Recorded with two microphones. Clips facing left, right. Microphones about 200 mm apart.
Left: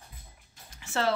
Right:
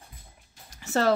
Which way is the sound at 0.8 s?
40° right (ahead or behind).